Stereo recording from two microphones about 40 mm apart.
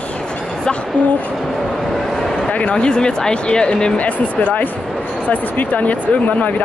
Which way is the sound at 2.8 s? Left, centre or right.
Left.